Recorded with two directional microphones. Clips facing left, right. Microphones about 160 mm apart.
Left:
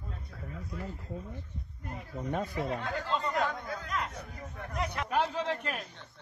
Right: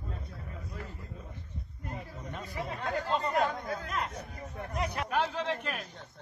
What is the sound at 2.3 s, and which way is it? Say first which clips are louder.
Speech: left 5 dB; 55° left (ahead or behind).